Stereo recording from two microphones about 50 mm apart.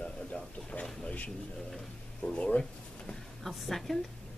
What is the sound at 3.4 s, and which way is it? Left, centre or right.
Speech, centre.